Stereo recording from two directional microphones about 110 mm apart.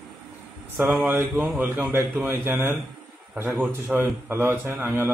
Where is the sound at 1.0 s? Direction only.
25° right (ahead or behind).